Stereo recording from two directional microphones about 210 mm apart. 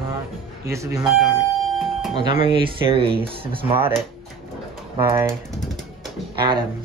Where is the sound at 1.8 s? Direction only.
Centre (ahead or behind).